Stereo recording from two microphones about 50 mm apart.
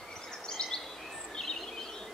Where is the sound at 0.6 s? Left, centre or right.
Centre.